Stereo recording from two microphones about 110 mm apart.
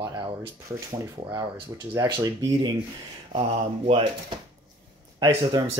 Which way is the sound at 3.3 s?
60° right (ahead or behind).